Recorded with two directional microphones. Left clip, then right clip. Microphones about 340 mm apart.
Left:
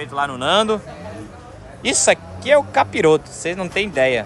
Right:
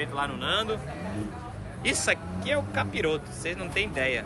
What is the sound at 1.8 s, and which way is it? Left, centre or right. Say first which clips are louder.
Speech: left 10 dB; centre.